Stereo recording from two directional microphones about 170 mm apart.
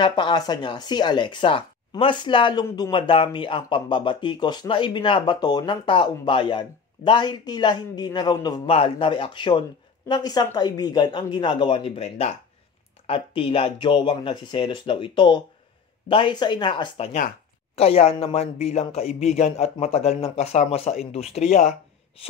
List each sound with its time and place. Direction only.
0.0 s speech: 25° left (ahead or behind)